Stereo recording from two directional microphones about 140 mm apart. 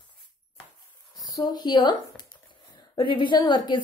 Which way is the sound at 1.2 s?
30° left (ahead or behind).